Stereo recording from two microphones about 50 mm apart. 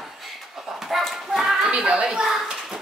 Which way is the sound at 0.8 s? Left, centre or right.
Centre.